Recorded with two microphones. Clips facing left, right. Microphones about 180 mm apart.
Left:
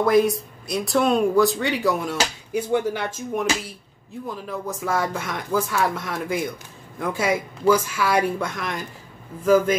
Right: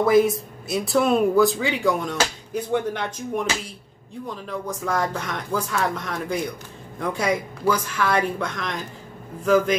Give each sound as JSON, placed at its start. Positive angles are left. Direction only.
{"t": 0.0, "sound": "a woman's voice", "side_deg": 0}